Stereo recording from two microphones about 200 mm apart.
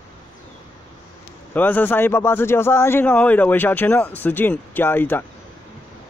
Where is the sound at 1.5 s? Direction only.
10° left (ahead or behind).